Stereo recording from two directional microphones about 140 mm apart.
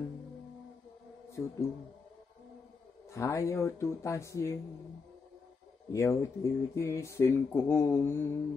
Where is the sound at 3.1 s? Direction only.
20° left (ahead or behind).